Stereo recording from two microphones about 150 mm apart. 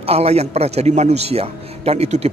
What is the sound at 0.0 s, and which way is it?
A man's voice, 40° right (ahead or behind).